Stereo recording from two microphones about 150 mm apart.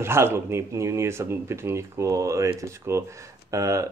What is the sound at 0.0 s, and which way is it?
Speech, 15° right (ahead or behind).